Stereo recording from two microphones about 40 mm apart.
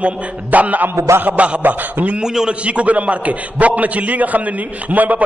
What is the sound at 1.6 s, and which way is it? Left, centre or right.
Speech, right.